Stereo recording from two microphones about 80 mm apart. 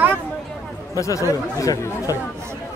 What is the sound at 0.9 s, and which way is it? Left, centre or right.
Speech, left.